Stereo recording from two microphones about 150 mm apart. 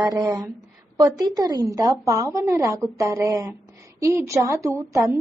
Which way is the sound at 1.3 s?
25° right (ahead or behind).